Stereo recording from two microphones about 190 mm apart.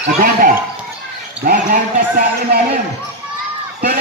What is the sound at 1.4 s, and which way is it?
A man's voice, 45° right (ahead or behind).